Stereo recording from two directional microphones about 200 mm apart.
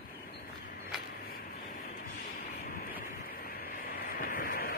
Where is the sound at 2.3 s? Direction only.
45° left (ahead or behind).